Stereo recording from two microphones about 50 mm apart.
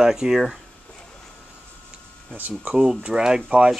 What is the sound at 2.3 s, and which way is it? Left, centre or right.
Speech, right.